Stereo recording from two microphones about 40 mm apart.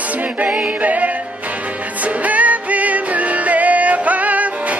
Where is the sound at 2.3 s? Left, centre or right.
Right.